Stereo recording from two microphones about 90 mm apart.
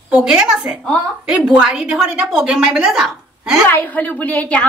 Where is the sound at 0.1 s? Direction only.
10° right (ahead or behind).